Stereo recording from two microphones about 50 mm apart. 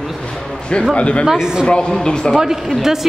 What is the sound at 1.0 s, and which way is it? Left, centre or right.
Speech, left.